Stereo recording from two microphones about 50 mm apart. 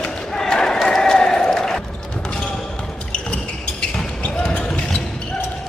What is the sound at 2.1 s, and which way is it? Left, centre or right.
Basketball bounce, centre.